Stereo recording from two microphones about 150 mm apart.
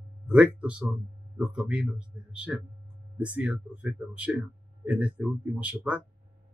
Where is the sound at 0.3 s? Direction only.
10° right (ahead or behind).